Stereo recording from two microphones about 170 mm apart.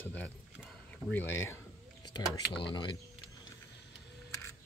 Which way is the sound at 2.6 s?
30° left (ahead or behind).